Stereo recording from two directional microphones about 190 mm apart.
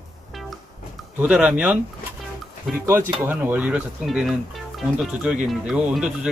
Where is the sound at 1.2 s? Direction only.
5° right (ahead or behind).